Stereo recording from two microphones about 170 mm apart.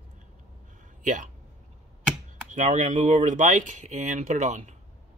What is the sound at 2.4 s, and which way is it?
Speech, 45° right (ahead or behind).